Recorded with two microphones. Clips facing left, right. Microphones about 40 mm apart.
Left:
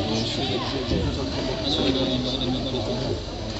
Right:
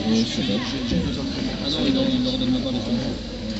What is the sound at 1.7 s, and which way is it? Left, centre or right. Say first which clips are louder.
Speech: right 3 dB; centre.